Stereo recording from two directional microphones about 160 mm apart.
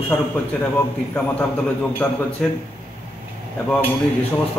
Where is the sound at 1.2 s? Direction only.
10° left (ahead or behind).